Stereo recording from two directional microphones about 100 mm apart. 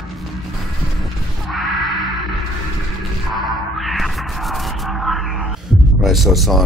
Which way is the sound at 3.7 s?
Centre (ahead or behind).